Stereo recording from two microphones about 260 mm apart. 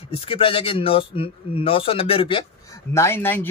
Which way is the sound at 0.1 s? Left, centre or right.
Left.